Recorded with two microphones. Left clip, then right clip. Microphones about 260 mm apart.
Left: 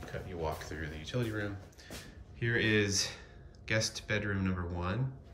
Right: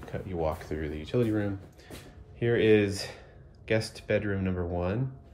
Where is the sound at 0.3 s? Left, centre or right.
Centre.